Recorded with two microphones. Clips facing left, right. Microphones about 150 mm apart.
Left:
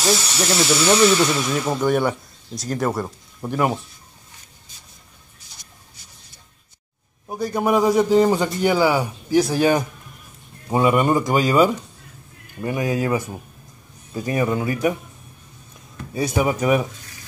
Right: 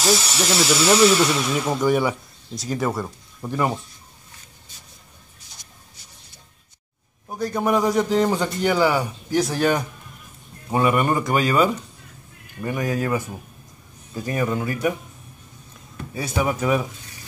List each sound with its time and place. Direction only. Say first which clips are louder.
0.0 s speech: even; centre (ahead or behind)
7.2 s a man's voice: left 2 dB; 10° left (ahead or behind)
16.2 s a man's voice: left 3 dB; 15° left (ahead or behind)